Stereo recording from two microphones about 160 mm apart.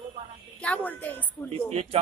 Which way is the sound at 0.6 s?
10° left (ahead or behind).